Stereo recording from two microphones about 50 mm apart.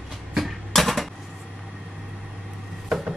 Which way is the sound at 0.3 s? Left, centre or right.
Centre.